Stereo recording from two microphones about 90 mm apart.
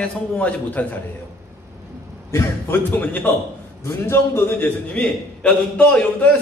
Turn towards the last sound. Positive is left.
turn(degrees=15)  # may be behind; listen again after turning